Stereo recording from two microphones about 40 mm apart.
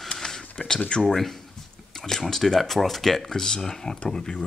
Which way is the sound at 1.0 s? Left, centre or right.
Centre.